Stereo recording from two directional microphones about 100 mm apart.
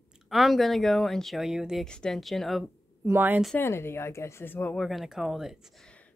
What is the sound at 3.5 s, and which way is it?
Speech, 25° left (ahead or behind).